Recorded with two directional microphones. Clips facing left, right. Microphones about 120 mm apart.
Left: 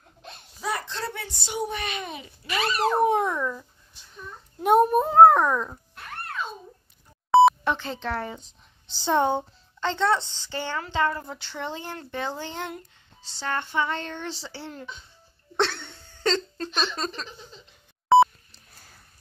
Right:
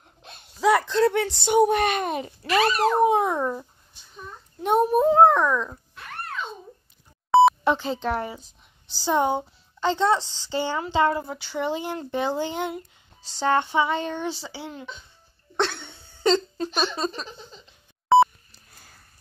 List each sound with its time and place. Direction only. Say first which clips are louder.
0.6 s a child's voice: right 12 dB; 90° right; by 2.3 s 50° right (ahead or behind)
3.0 s speech: right 2 dB; 15° right (ahead or behind)
3.3 s a child's voice: right 3 dB; 35° right (ahead or behind)
4.6 s speech: left 2 dB; centre (ahead or behind)
5.3 s speech: even; 40° left (ahead or behind)
7.2 s beep: even; centre (ahead or behind)
7.7 s speech: right 4 dB; 15° right (ahead or behind)
8.8 s a woman's voice: right 2 dB; 25° left (ahead or behind)
9.1 s a child's voice: even; 5° right (ahead or behind)
11.2 s speech: right 6 dB; 5° right (ahead or behind)
15.5 s a sound: even; centre (ahead or behind)
18.0 s a sound: even; centre (ahead or behind)